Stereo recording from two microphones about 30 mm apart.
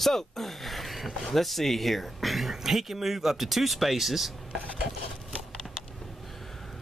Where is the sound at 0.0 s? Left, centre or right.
Centre.